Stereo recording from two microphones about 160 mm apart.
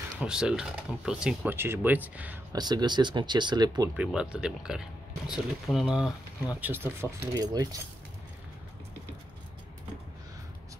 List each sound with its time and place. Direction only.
0.2 s speech: 5° right (ahead or behind)
2.5 s speech: 25° right (ahead or behind)
3.9 s speech: 5° right (ahead or behind)
7.3 s speech: 25° right (ahead or behind)